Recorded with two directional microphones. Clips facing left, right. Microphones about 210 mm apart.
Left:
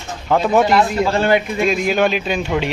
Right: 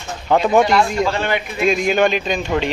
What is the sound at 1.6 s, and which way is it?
Speech, centre (ahead or behind).